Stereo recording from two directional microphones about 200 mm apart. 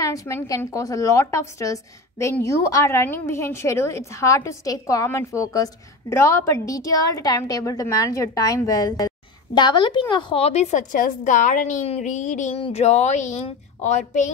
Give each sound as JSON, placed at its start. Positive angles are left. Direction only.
{"t": 0.0, "sound": "a woman's voice", "side_deg": 15}